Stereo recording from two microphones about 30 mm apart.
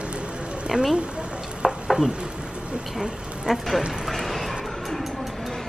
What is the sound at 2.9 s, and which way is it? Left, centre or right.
Speech, centre.